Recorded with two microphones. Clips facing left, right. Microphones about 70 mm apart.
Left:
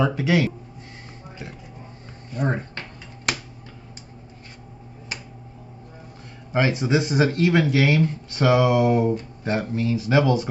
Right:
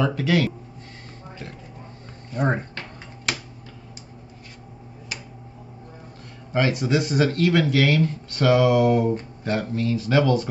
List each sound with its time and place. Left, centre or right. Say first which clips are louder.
0.0 s speech: left 1 dB; centre
2.3 s speech: right 2 dB; right
5.1 s a sound: left 1 dB; left
6.5 s speech: left 1 dB; left